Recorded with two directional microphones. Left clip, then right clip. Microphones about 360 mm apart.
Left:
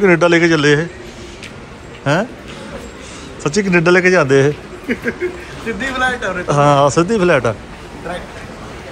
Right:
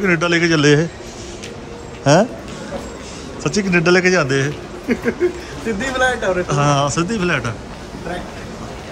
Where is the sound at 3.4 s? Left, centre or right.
Centre.